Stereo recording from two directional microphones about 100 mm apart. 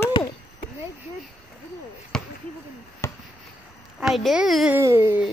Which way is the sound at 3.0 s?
30° left (ahead or behind).